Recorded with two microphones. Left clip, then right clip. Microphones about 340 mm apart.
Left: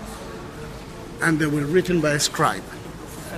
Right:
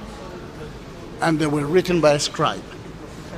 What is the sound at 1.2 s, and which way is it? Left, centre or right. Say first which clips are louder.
A man's voice: right 1 dB; centre.